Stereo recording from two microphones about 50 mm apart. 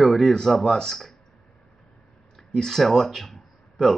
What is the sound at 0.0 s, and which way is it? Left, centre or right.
Speech, centre.